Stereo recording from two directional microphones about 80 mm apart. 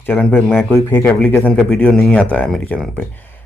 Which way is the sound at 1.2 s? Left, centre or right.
Centre.